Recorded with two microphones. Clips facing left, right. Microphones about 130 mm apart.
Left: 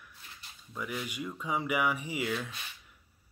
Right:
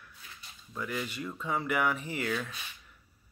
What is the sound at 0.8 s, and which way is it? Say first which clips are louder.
Speech: right 1 dB; 10° left (ahead or behind).